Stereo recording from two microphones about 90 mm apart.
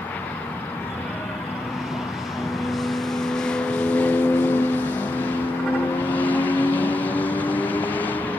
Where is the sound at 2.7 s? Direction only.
5° left (ahead or behind); by 8.2 s 20° left (ahead or behind).